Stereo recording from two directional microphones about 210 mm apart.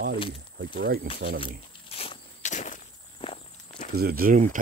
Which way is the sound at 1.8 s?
25° left (ahead or behind).